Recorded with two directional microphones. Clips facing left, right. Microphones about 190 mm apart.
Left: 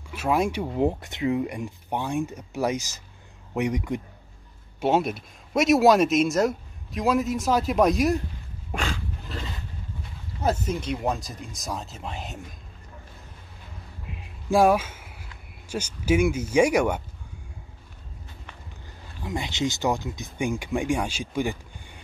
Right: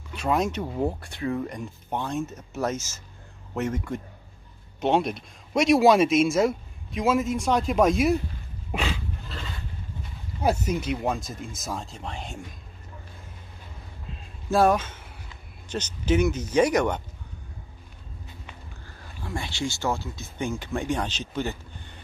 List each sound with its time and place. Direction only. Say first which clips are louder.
0.1 s speech: left 1 dB; 5° left (ahead or behind)
8.7 s dog: right 1 dB; 5° right (ahead or behind)
10.4 s speech: right 1 dB; 10° right (ahead or behind)
14.0 s music: left 2 dB; 15° left (ahead or behind)
15.7 s speech: left 1 dB; 10° left (ahead or behind)
18.9 s speech: left 3 dB; 15° left (ahead or behind)